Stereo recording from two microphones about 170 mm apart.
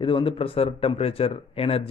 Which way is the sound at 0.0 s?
30° left (ahead or behind).